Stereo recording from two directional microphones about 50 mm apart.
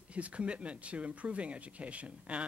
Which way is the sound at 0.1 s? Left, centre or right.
Right.